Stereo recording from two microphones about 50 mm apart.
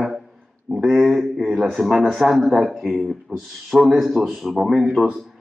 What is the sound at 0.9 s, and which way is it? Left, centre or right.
Speech, centre.